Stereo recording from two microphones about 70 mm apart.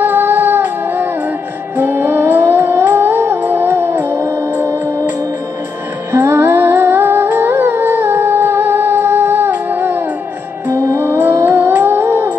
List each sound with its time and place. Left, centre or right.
0.0 s music: right
4.2 s music: right
6.1 s humming: right
10.7 s music: right